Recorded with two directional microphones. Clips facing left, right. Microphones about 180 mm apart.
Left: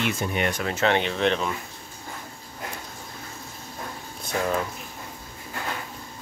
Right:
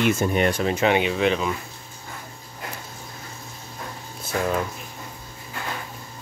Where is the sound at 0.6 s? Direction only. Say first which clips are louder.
Right 3 dB; 15° right (ahead or behind).